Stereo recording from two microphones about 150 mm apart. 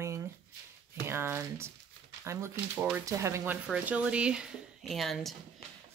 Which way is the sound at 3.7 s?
5° right (ahead or behind).